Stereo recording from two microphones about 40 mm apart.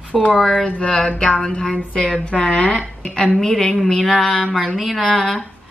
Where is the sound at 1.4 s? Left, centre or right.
Left.